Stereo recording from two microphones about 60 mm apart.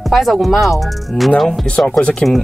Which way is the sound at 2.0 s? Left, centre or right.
Centre.